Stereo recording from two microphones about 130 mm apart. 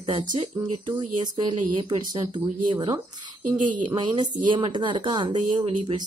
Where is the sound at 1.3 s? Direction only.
40° right (ahead or behind).